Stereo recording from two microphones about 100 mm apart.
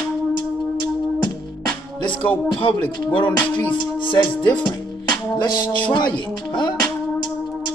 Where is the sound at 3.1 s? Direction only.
55° left (ahead or behind).